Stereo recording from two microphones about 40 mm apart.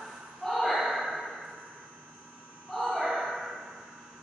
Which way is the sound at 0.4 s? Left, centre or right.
Centre.